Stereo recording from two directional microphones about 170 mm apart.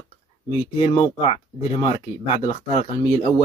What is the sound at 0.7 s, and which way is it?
Speech, 35° left (ahead or behind).